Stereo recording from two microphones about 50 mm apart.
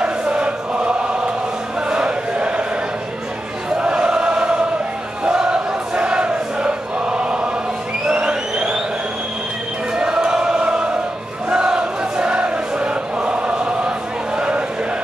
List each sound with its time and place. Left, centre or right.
0.0 s choir: right
3.7 s choir: centre
5.2 s a sound: centre
9.9 s chant: centre